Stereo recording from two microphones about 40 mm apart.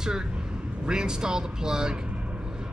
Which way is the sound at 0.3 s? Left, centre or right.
Right.